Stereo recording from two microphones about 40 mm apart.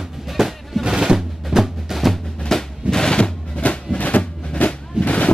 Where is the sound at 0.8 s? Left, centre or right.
Centre.